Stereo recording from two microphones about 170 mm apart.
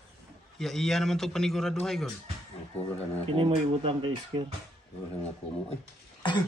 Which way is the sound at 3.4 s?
35° right (ahead or behind).